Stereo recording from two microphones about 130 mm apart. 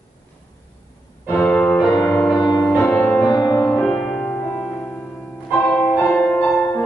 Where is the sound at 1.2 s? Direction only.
10° left (ahead or behind).